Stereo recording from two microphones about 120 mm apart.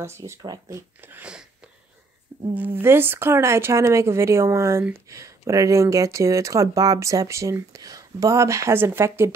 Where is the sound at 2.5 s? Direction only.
15° right (ahead or behind).